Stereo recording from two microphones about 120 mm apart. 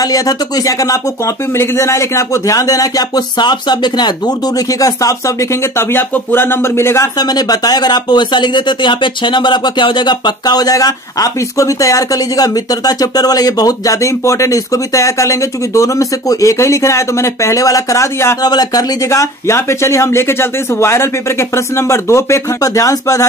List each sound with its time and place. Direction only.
0.0 s speech: 30° left (ahead or behind)